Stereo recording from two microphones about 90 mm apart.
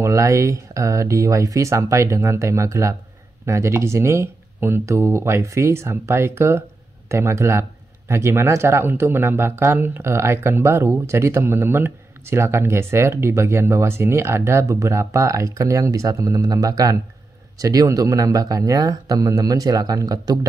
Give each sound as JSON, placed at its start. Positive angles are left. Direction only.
{"t": 0.0, "sound": "speech", "side_deg": -35}